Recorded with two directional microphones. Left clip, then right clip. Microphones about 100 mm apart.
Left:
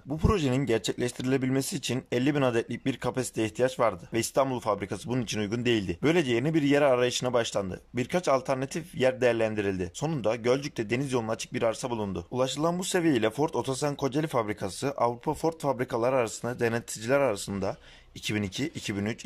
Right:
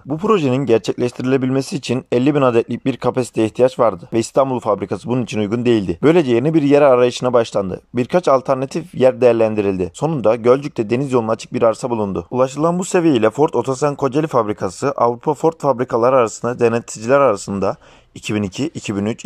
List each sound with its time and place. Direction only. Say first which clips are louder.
0.2 s speech: right 12 dB; 30° right (ahead or behind)